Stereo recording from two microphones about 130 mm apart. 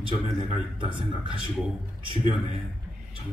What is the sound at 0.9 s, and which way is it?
A man's voice, 40° left (ahead or behind).